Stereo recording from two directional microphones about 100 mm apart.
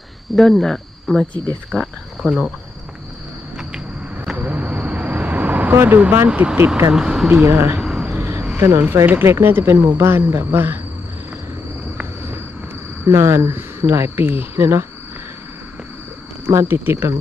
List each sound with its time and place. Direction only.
0.4 s speech: 5° left (ahead or behind)
1.8 s cricket: 5° right (ahead or behind)
4.3 s vehicle: 15° right (ahead or behind)
6.9 s speech: 5° right (ahead or behind)
7.4 s speech: 25° right (ahead or behind)
7.8 s a sound: 10° right (ahead or behind)
8.1 s a sound: 20° right (ahead or behind)
8.5 s speech: 25° right (ahead or behind)
13.0 s speech: 30° right (ahead or behind)
16.4 s speech: 25° right (ahead or behind)